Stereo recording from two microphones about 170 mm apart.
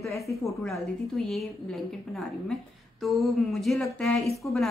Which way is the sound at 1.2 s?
Centre (ahead or behind).